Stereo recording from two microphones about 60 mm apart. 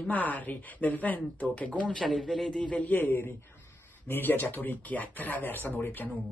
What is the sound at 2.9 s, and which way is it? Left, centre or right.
Speech, left.